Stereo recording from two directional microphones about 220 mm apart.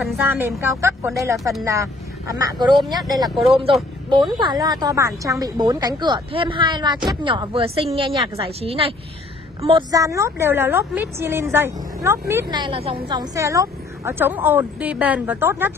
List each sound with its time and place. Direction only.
0.0 s a woman's voice: 5° right (ahead or behind)
4.4 s a woman's voice: 20° right (ahead or behind)